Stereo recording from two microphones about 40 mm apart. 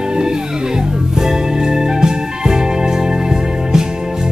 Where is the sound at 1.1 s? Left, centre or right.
Centre.